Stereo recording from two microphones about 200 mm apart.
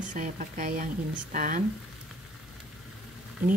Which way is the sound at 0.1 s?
40° right (ahead or behind).